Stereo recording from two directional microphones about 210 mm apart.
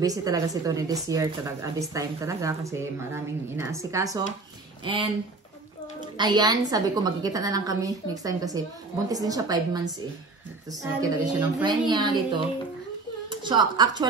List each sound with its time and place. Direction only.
0.0 s speech: 15° right (ahead or behind)
6.1 s a woman's voice: 20° right (ahead or behind)